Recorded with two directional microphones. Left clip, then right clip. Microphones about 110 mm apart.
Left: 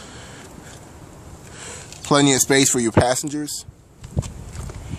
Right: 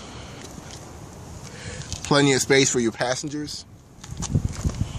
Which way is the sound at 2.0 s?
45° left (ahead or behind).